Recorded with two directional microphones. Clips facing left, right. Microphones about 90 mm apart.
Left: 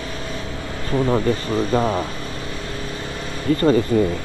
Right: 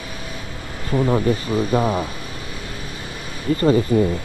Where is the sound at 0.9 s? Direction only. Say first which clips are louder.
Even; 10° right (ahead or behind).